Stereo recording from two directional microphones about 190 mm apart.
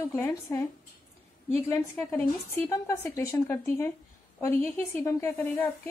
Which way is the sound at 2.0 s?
5° left (ahead or behind).